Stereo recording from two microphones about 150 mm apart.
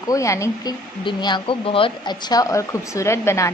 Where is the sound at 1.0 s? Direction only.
30° left (ahead or behind).